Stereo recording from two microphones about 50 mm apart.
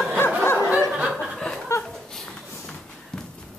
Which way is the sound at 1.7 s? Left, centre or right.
Left.